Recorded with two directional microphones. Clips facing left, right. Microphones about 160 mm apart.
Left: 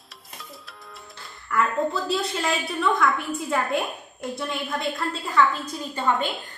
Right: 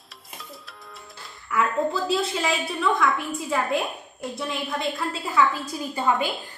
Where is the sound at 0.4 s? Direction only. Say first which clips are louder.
Even; centre (ahead or behind).